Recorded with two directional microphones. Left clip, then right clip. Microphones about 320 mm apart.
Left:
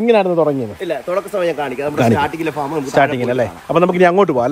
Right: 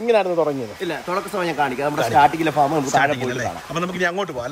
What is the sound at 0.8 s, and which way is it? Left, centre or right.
A man's voice, centre.